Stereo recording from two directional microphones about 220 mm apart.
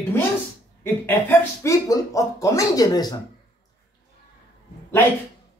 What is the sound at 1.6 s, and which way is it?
A man's voice, 15° left (ahead or behind).